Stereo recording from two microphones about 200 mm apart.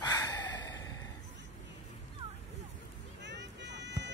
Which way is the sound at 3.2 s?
60° right (ahead or behind).